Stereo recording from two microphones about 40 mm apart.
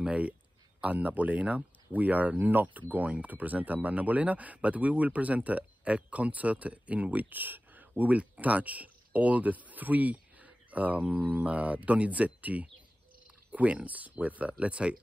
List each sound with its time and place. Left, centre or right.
0.7 s speech: right